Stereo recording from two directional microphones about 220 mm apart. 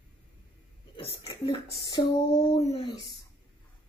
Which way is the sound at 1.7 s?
20° left (ahead or behind).